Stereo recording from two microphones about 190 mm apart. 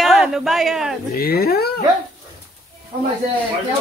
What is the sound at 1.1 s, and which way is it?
Speech, 55° left (ahead or behind).